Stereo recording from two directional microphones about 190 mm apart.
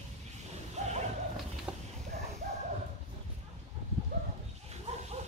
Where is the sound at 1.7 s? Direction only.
5° right (ahead or behind).